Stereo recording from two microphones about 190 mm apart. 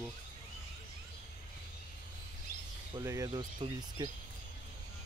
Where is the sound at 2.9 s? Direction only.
20° right (ahead or behind).